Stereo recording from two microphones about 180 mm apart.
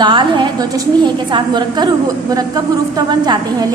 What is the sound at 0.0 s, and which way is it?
A woman's voice, 25° right (ahead or behind).